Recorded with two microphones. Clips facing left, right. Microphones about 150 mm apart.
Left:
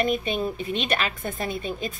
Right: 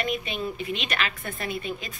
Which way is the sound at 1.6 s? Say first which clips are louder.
Left 4 dB; 35° left (ahead or behind).